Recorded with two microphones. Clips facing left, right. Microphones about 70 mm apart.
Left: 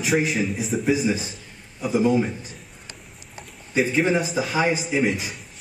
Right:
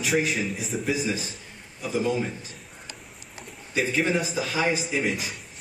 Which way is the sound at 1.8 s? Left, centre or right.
Centre.